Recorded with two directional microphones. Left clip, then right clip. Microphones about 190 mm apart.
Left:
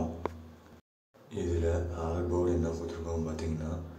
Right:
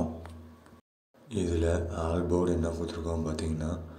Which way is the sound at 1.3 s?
25° right (ahead or behind).